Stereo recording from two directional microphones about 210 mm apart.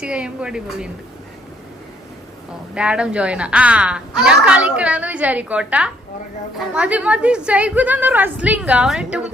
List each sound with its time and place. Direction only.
0.0 s a woman's voice: 5° right (ahead or behind)
2.7 s a woman's voice: 5° right (ahead or behind)